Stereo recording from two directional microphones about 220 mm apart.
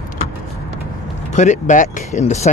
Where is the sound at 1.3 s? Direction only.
35° left (ahead or behind).